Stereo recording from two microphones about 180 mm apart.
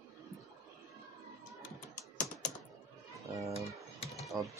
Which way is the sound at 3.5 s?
35° left (ahead or behind).